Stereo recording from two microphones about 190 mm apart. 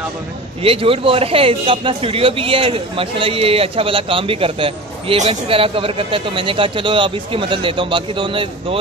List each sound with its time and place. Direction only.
0.6 s speech: 30° right (ahead or behind)